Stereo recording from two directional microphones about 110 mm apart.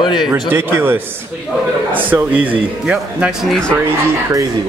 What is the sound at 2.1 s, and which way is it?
Speech, 15° right (ahead or behind).